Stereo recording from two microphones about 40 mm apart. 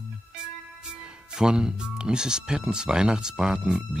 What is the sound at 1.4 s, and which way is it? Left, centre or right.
Speech, centre.